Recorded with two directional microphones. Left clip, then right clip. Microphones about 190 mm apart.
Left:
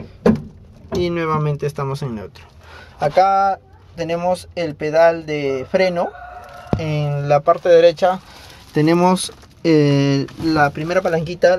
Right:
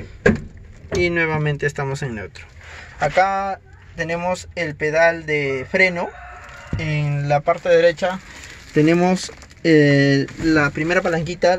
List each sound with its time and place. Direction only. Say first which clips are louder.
1.0 s speech: right 1 dB; 5° left (ahead or behind)
7.3 s speech: left 4 dB; 15° left (ahead or behind)
10.5 s speech: left 1 dB; 5° right (ahead or behind)